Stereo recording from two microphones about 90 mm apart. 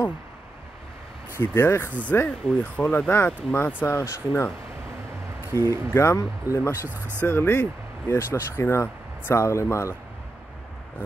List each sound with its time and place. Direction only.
1.4 s speech: 25° left (ahead or behind)
2.0 s speech: 15° left (ahead or behind)
3.8 s speech: 30° left (ahead or behind)
5.7 s speech: 30° left (ahead or behind)
6.9 s speech: 25° right (ahead or behind)
7.2 s speech: 25° left (ahead or behind)